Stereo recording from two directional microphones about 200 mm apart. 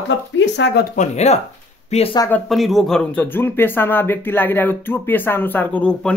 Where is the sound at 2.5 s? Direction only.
Centre (ahead or behind).